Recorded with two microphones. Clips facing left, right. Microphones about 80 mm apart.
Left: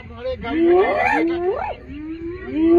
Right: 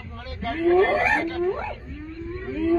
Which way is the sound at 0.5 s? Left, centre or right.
Centre.